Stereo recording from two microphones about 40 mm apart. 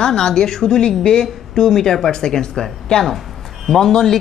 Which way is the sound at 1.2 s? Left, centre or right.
Centre.